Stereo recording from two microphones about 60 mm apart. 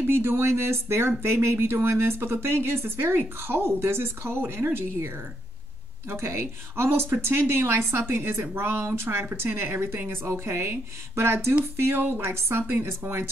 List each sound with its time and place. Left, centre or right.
0.0 s speech: right
6.0 s speech: right
9.2 s speech: right